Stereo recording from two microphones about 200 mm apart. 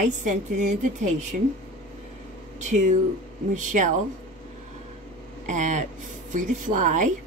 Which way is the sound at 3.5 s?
40° right (ahead or behind).